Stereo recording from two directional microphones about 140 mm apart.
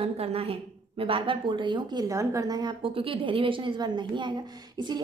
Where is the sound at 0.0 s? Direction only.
45° right (ahead or behind).